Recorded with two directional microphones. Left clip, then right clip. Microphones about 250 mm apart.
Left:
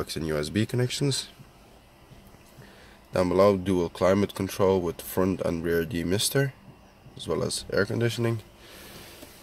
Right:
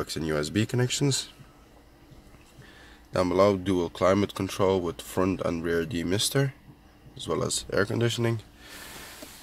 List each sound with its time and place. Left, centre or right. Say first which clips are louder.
0.0 s speech: even; centre
3.1 s speech: left 1 dB; centre